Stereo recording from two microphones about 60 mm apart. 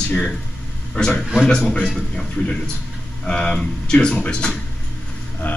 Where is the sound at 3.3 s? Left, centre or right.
Centre.